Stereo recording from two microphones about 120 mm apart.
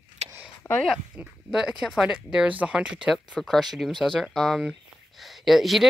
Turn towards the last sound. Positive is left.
turn(degrees=0)  # may be behind; listen again after turning